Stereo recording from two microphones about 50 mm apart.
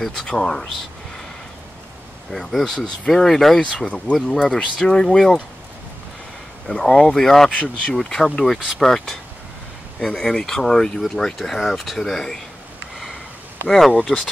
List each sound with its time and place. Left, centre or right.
0.0 s speech: centre
2.3 s speech: centre
3.8 s speech: left
4.3 s speech: centre
6.7 s speech: centre
7.5 s speech: left
7.9 s speech: centre
13.7 s speech: centre